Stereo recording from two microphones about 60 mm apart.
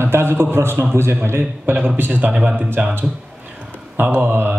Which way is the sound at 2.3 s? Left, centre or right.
Centre.